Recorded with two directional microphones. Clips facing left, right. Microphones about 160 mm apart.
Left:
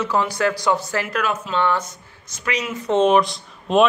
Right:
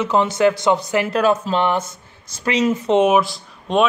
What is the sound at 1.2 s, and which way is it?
Speech, 35° right (ahead or behind).